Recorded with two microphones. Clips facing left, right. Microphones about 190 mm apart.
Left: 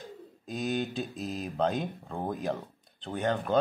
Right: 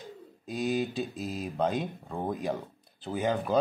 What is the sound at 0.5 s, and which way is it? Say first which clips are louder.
Speech: right 2 dB; centre (ahead or behind).